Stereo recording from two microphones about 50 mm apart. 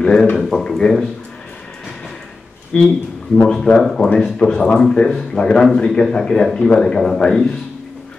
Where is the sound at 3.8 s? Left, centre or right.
Centre.